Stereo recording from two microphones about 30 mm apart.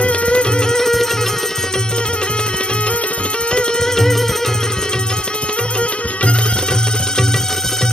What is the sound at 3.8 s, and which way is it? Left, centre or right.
Music, centre.